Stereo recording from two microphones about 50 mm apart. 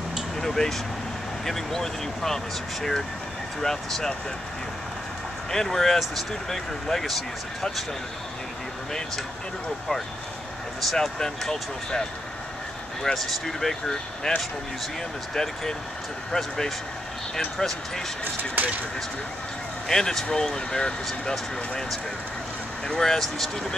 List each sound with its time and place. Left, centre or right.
0.4 s speech: centre
5.5 s speech: centre
10.8 s speech: centre
18.2 s speech: right
19.9 s speech: centre